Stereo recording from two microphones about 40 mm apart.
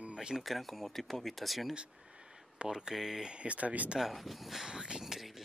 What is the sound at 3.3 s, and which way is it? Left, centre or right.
Speech, right.